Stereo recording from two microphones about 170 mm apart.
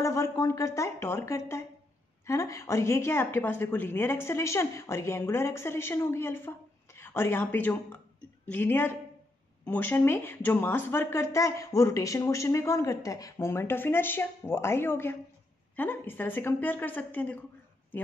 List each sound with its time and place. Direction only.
0.0 s speech: 20° left (ahead or behind)